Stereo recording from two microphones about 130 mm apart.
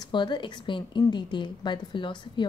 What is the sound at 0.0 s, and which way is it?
A woman's voice, 35° left (ahead or behind).